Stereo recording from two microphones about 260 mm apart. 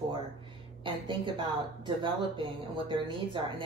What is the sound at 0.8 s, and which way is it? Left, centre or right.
Speech, centre.